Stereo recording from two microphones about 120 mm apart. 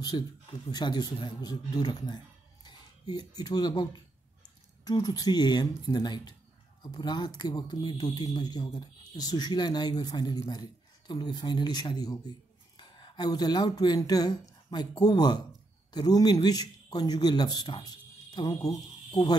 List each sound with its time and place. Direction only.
0.1 s a man's voice: 40° left (ahead or behind)